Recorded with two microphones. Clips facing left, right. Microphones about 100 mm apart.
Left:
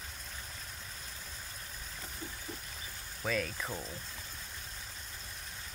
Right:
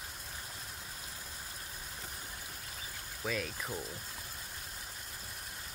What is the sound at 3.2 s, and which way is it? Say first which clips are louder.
Speech: left 2 dB; 5° right (ahead or behind).